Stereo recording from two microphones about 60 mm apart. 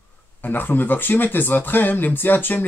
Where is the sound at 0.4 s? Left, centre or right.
Left.